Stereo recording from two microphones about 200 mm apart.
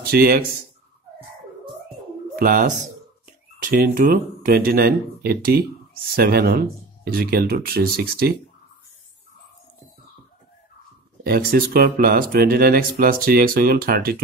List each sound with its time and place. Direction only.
0.0 s speech: 45° right (ahead or behind)
2.3 s speech: 45° right (ahead or behind)
11.2 s speech: 50° right (ahead or behind)